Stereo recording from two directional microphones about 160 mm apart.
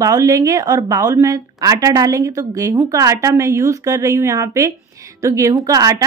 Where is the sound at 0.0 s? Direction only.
20° right (ahead or behind).